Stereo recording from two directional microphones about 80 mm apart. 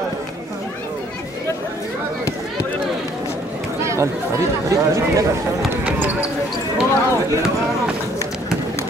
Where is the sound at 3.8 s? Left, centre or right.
Right.